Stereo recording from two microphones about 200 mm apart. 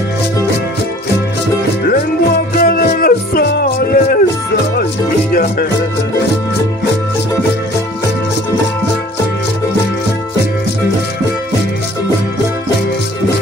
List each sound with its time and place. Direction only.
2.5 s music: 45° left (ahead or behind)
5.3 s music: 45° left (ahead or behind)